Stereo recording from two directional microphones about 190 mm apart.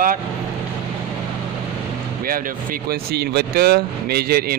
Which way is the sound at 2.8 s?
55° right (ahead or behind).